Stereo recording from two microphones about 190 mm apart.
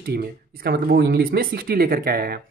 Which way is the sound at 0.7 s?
50° right (ahead or behind).